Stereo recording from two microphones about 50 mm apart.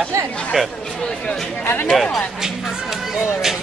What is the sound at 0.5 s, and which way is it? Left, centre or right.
Speech, centre.